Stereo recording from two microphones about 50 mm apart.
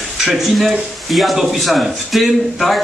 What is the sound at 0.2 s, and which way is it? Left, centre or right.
A man's voice, centre.